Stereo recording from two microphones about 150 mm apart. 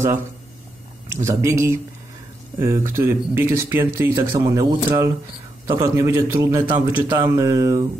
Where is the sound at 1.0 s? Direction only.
20° right (ahead or behind).